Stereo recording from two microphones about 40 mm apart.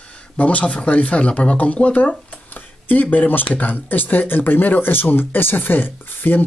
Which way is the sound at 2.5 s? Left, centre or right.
Left.